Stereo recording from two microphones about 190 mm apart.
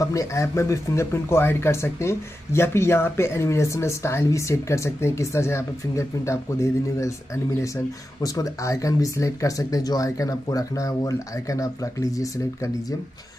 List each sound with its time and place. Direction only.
0.0 s speech: 15° left (ahead or behind)